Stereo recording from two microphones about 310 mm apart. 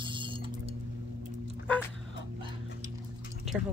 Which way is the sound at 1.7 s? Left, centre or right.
Centre.